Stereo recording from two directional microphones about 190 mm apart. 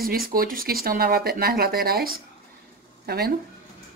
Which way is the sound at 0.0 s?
50° right (ahead or behind).